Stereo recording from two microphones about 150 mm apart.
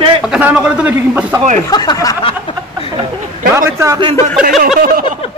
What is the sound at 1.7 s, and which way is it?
Speech, 30° left (ahead or behind).